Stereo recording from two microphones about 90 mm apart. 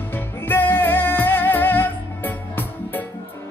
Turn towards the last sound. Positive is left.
turn(degrees=20)  # may be behind; listen again after turning